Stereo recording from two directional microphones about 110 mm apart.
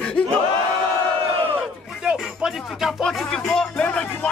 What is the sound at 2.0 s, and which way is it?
Music, 5° right (ahead or behind).